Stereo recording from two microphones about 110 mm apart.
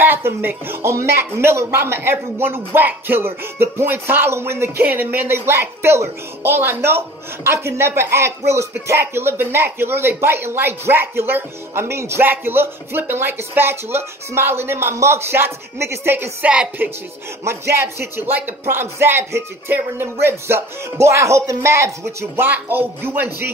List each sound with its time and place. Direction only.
0.0 s speech: 20° right (ahead or behind)